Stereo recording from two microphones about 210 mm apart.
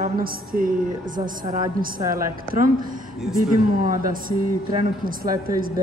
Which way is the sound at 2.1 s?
40° right (ahead or behind).